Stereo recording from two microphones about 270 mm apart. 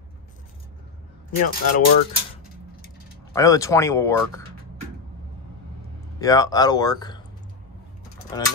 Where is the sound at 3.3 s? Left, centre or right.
Centre.